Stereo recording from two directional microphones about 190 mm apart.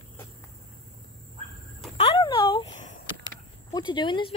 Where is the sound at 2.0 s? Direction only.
30° left (ahead or behind).